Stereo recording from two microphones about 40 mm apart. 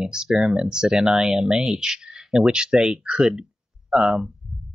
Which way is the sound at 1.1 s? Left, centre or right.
Centre.